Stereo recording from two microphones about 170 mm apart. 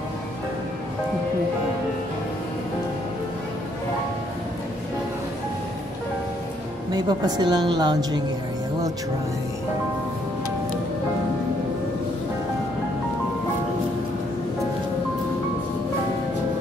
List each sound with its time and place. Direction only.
6.9 s a woman's voice: 25° right (ahead or behind)